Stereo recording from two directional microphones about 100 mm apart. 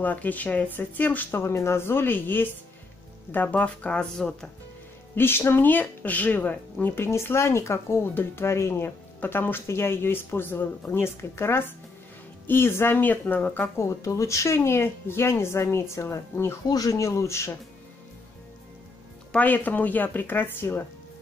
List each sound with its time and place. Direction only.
0.0 s speech: 15° left (ahead or behind)
5.1 s speech: 25° left (ahead or behind)
13.8 s speech: 30° left (ahead or behind)
19.3 s speech: 15° left (ahead or behind)